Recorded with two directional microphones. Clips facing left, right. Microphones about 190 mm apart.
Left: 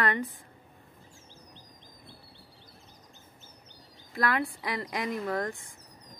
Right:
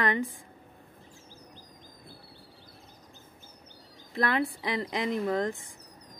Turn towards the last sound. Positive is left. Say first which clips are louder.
# right 3 dB
turn(degrees=-20)  # may be behind; listen again after turning